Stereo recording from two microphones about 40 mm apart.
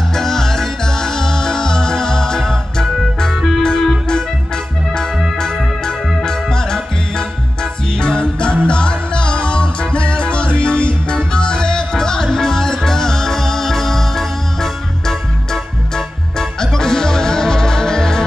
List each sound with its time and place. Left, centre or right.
0.1 s music: centre
3.3 s music: centre
3.6 s music: centre
5.4 s organ: centre
8.0 s music: left